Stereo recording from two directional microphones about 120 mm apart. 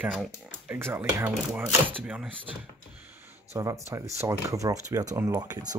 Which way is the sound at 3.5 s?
25° right (ahead or behind).